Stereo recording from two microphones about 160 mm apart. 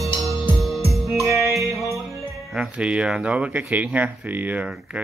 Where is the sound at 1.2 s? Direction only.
20° right (ahead or behind).